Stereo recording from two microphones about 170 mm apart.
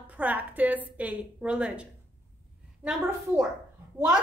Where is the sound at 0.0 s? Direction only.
10° right (ahead or behind).